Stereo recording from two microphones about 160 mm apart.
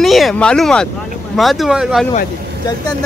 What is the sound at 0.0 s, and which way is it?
Speech, centre (ahead or behind).